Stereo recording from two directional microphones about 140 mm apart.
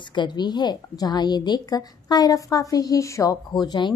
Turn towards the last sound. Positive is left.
turn(degrees=30)  # may be behind; listen again after turning